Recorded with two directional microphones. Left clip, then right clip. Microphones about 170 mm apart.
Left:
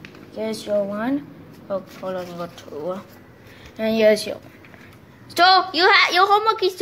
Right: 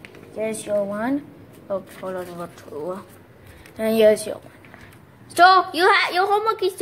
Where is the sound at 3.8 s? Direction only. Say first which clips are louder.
Right 2 dB; 25° right (ahead or behind).